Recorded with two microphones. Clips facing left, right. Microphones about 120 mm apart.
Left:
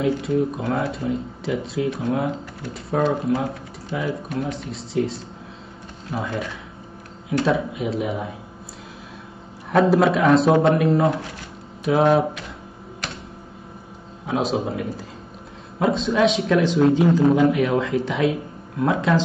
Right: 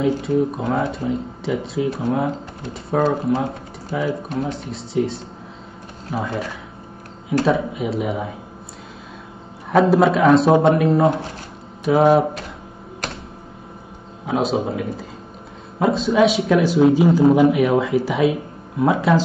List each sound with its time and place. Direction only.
0.0 s speech: centre (ahead or behind)
7.4 s speech: centre (ahead or behind)
9.7 s speech: centre (ahead or behind)
11.1 s speech: 30° right (ahead or behind)
11.8 s speech: centre (ahead or behind)
14.2 s speech: centre (ahead or behind)